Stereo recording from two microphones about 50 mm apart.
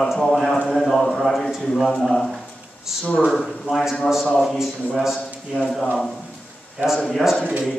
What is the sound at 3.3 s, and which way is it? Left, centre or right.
A man's voice, centre.